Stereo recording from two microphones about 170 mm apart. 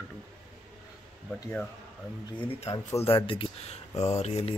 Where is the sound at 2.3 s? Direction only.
30° left (ahead or behind).